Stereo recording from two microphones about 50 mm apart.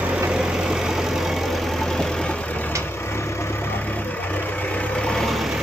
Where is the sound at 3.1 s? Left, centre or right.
Left.